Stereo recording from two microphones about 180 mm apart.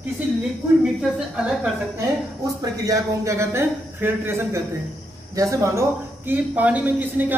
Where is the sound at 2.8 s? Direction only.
15° right (ahead or behind).